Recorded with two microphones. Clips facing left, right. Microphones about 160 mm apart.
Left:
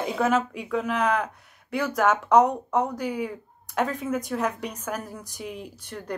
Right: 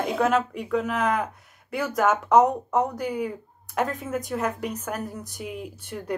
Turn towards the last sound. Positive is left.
turn(degrees=0)  # may be behind; listen again after turning